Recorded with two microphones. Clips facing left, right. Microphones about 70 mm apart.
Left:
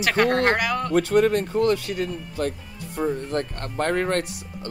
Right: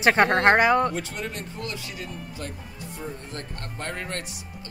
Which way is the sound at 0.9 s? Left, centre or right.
Left.